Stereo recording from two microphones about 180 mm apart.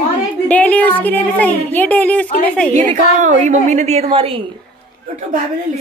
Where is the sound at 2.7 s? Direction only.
40° right (ahead or behind).